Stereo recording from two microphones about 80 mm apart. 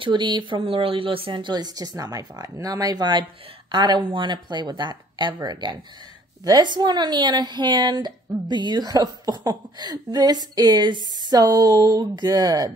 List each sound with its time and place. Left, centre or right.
0.0 s a woman's voice: right